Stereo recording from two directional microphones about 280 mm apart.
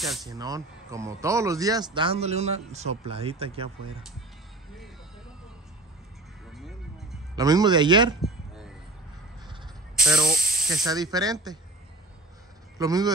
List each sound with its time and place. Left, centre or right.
0.0 s speech: centre
0.3 s speech: centre
6.5 s music: centre
7.3 s speech: centre
8.2 s a sound: centre
10.0 s speech: centre
10.3 s snake: right
10.9 s speech: centre
12.7 s a man's voice: centre